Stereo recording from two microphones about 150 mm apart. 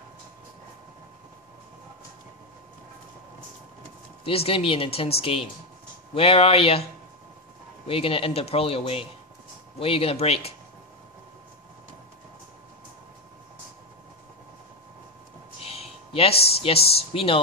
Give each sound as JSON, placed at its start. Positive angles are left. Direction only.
{"t": 4.2, "sound": "speech", "side_deg": 40}
{"t": 7.8, "sound": "speech", "side_deg": 40}
{"t": 15.6, "sound": "a sound", "side_deg": 40}
{"t": 16.6, "sound": "speech", "side_deg": 40}